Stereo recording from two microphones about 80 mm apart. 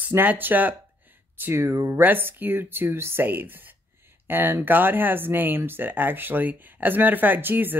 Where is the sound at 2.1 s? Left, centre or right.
Right.